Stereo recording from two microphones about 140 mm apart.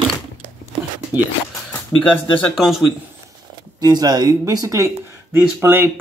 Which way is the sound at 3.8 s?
30° right (ahead or behind).